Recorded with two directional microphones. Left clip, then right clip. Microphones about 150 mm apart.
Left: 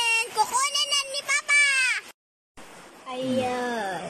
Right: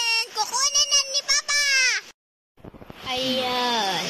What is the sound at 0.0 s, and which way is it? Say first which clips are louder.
Child singing: left 1 dB; 5° left (ahead or behind).